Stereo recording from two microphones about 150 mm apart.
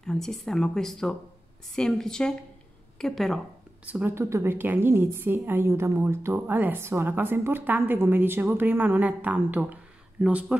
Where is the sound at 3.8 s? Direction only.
10° right (ahead or behind).